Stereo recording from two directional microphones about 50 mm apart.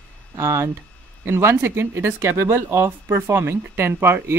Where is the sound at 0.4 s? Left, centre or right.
Right.